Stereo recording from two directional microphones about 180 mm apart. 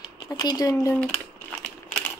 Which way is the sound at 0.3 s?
20° left (ahead or behind).